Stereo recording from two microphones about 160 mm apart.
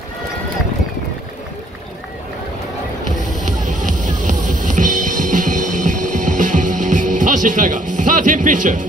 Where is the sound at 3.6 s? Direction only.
55° right (ahead or behind).